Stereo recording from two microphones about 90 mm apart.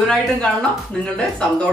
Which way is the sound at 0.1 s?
10° left (ahead or behind).